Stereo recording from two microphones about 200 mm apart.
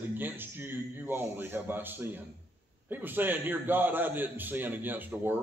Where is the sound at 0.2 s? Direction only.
10° right (ahead or behind).